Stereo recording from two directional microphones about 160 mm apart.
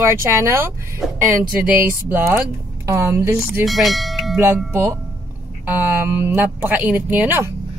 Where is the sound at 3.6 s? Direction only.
Centre (ahead or behind).